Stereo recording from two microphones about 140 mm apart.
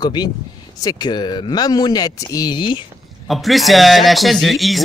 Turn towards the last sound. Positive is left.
turn(degrees=0)  # may be behind; listen again after turning